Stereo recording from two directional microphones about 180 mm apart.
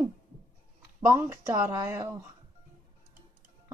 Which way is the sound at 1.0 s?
15° right (ahead or behind).